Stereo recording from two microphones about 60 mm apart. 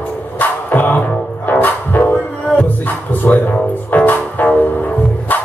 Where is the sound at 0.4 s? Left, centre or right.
Left.